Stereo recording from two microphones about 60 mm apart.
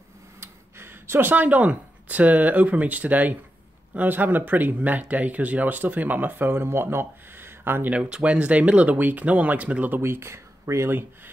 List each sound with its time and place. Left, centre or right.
0.4 s speech: right
7.9 s speech: centre
9.9 s speech: right